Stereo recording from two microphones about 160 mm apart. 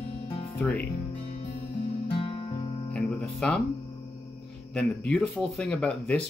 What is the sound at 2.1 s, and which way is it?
Music, 30° left (ahead or behind).